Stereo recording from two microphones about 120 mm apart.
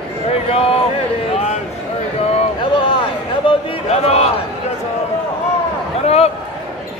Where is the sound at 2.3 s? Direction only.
50° left (ahead or behind).